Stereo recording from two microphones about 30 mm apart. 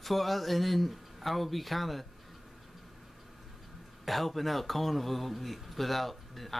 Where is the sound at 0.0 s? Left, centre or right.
Centre.